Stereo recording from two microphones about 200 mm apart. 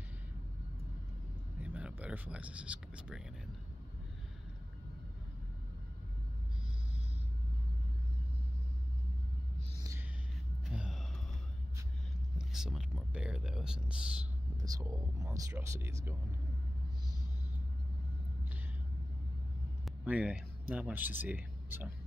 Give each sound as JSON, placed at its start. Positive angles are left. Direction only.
{"t": 1.6, "sound": "speech", "side_deg": -5}
{"t": 10.6, "sound": "gasp", "side_deg": 0}
{"t": 12.4, "sound": "speech", "side_deg": 0}
{"t": 14.6, "sound": "speech", "side_deg": -15}
{"t": 19.8, "sound": "a sound", "side_deg": -5}
{"t": 20.6, "sound": "speech", "side_deg": -10}